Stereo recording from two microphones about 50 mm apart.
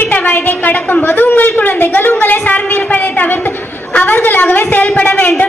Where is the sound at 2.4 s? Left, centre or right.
Left.